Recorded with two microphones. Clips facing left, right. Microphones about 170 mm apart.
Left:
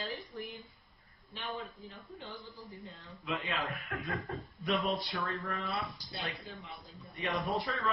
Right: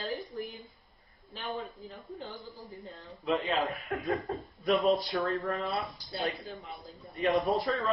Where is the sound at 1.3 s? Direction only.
40° right (ahead or behind).